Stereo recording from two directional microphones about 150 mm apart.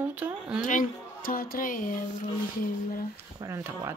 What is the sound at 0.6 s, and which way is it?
Speech, 65° left (ahead or behind).